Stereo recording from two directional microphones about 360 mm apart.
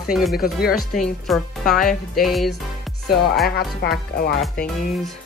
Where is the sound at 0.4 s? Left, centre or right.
Left.